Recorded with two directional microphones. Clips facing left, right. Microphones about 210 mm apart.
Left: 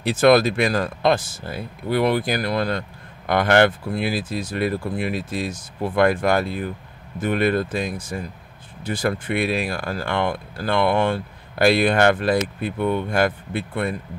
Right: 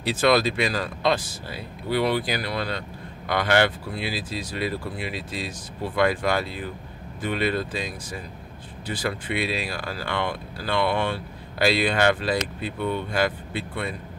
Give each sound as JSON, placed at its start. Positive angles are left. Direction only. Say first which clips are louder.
{"t": 0.0, "sound": "speech", "louder": "left 5 dB", "side_deg": 50}